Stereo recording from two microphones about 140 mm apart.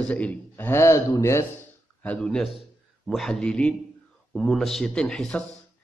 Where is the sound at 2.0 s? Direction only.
5° left (ahead or behind).